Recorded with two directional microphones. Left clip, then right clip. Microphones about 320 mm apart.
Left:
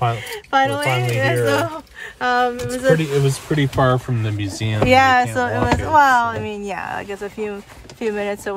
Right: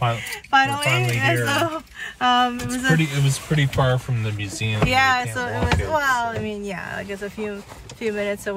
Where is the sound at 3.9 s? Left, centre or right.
Left.